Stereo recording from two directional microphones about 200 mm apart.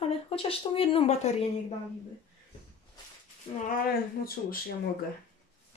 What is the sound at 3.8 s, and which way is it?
Speech, 50° left (ahead or behind).